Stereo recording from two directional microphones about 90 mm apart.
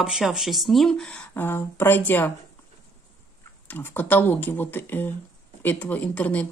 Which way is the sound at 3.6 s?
20° left (ahead or behind).